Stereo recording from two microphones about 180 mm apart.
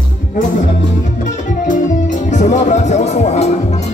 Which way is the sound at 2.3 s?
40° left (ahead or behind).